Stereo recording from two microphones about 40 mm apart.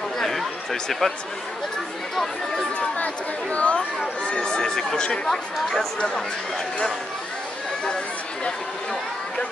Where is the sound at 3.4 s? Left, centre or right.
Left; by 5.9 s centre.